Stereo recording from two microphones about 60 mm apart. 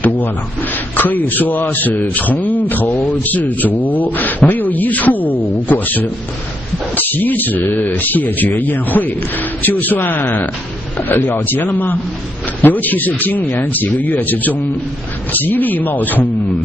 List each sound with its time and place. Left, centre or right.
0.0 s a man's voice: left